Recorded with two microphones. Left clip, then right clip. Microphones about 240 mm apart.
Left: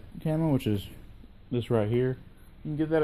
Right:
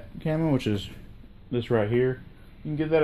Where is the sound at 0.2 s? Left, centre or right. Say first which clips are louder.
Right 2 dB; left.